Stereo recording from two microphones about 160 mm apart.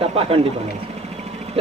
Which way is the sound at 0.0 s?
35° right (ahead or behind).